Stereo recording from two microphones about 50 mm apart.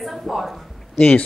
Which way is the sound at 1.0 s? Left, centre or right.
Left.